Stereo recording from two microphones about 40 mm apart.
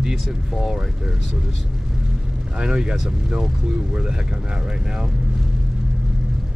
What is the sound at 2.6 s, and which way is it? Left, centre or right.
Speech, centre.